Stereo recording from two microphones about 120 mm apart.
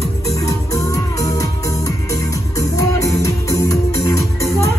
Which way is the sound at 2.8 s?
25° left (ahead or behind).